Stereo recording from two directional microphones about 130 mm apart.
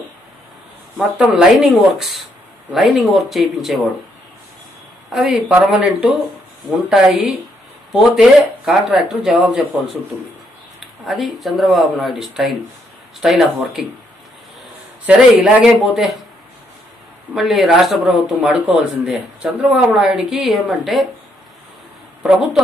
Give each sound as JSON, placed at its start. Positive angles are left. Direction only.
{"t": 0.9, "sound": "speech", "side_deg": -5}
{"t": 5.1, "sound": "speech", "side_deg": 0}
{"t": 10.8, "sound": "speech", "side_deg": 0}
{"t": 15.0, "sound": "speech", "side_deg": -10}
{"t": 17.3, "sound": "speech", "side_deg": 0}
{"t": 22.2, "sound": "speech", "side_deg": -5}